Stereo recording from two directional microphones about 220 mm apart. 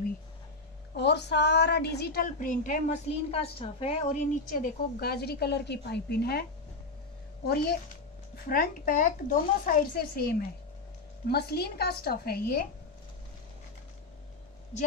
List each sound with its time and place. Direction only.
0.9 s a woman's voice: 50° left (ahead or behind)
7.4 s a woman's voice: 45° left (ahead or behind)